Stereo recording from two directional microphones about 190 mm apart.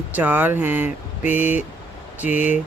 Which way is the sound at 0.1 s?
10° right (ahead or behind).